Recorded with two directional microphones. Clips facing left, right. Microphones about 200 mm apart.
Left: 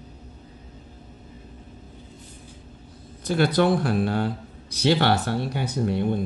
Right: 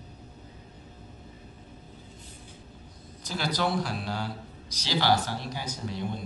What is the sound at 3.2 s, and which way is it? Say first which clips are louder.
A man's voice: left 10 dB; 60° left (ahead or behind).